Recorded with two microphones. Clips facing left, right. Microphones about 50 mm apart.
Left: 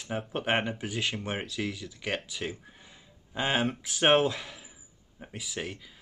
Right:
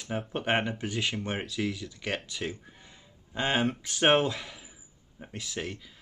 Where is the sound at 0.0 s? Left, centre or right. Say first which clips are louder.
Even; centre.